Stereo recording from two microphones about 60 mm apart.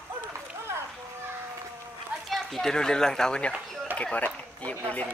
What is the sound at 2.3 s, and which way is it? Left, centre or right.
A child's voice, centre.